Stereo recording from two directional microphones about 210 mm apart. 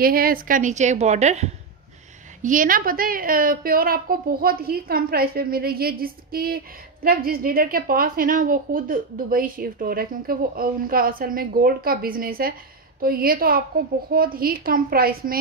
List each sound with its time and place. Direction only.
0.0 s a woman's voice: 45° right (ahead or behind)